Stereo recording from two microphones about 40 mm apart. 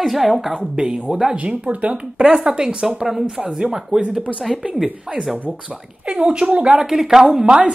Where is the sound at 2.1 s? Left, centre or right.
Centre.